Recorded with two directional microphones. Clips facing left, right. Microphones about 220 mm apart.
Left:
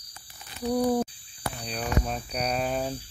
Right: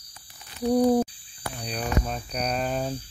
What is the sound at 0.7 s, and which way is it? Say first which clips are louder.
Hoot: right 4 dB; 20° right (ahead or behind).